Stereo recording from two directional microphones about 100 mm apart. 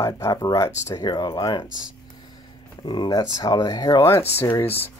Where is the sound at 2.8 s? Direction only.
45° left (ahead or behind).